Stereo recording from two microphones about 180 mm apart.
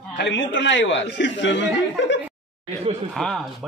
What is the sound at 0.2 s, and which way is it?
Speech, 85° left.